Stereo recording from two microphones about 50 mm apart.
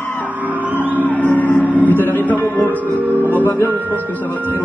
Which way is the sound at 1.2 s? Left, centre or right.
Left.